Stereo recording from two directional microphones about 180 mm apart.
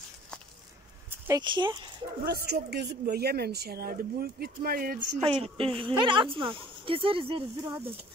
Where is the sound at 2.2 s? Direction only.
60° right (ahead or behind).